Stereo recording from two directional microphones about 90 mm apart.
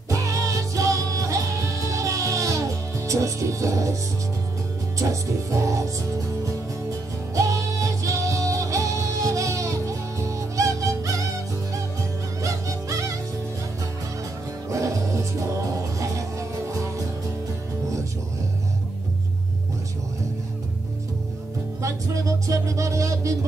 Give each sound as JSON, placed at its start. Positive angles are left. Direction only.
{"t": 0.1, "sound": "music", "side_deg": -35}
{"t": 12.4, "sound": "music", "side_deg": -35}
{"t": 14.7, "sound": "music", "side_deg": -35}
{"t": 21.8, "sound": "music", "side_deg": -35}